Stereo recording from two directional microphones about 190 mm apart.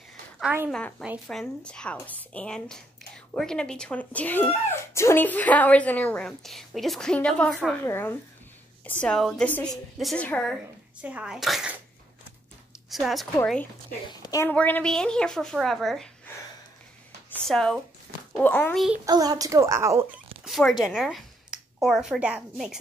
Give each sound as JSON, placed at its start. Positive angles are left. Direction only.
{"t": 0.4, "sound": "a woman's voice", "side_deg": -10}
{"t": 0.7, "sound": "a woman's voice", "side_deg": 5}
{"t": 12.9, "sound": "a woman's voice", "side_deg": 0}
{"t": 14.0, "sound": "a woman's voice", "side_deg": 20}
{"t": 14.5, "sound": "a woman's voice", "side_deg": 5}
{"t": 17.3, "sound": "a woman's voice", "side_deg": 5}
{"t": 19.0, "sound": "speech", "side_deg": -20}
{"t": 20.4, "sound": "a woman's voice", "side_deg": 0}